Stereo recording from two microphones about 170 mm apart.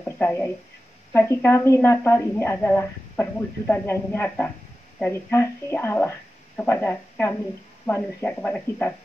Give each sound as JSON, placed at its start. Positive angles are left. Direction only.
{"t": 0.2, "sound": "a woman's voice", "side_deg": 10}